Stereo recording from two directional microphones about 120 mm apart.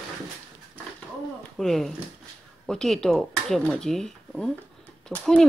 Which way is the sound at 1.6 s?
5° left (ahead or behind).